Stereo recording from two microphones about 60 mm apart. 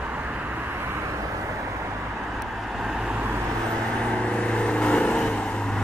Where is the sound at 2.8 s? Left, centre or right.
Centre.